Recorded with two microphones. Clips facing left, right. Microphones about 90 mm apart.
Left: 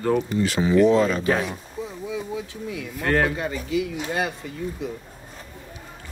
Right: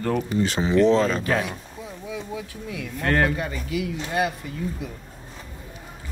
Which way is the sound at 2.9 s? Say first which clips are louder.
Even; centre (ahead or behind).